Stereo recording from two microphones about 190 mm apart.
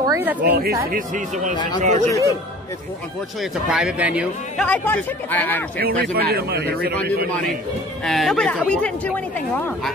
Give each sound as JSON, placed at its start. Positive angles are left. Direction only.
{"t": 0.0, "sound": "speech", "side_deg": -15}
{"t": 0.5, "sound": "speech", "side_deg": -55}
{"t": 3.6, "sound": "speech", "side_deg": -5}
{"t": 4.6, "sound": "a man's voice", "side_deg": 10}
{"t": 5.8, "sound": "speech", "side_deg": -50}
{"t": 8.0, "sound": "speech", "side_deg": 0}